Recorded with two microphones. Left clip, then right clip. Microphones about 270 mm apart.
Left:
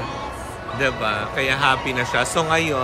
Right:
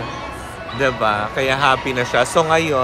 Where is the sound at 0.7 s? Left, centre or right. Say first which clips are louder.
Right 4 dB; centre.